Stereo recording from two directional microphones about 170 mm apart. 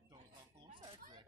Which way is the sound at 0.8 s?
25° right (ahead or behind).